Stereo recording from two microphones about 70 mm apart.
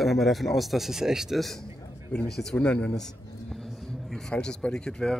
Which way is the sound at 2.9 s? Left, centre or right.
Centre.